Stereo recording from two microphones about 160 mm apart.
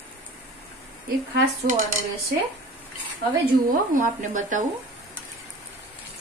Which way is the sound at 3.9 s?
50° right (ahead or behind).